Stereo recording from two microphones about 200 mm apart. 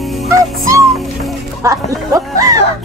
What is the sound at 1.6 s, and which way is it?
Speech, 15° right (ahead or behind).